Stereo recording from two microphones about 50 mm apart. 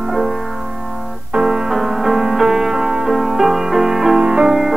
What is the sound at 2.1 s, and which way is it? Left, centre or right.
Music, centre.